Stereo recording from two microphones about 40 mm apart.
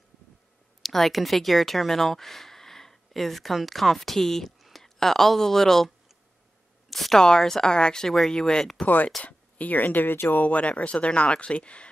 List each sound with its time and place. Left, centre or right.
0.8 s speech: centre
4.6 s a sound: centre
4.8 s a woman's voice: centre
6.9 s a sound: centre
7.2 s speech: centre
8.8 s speech: left
10.3 s speech: left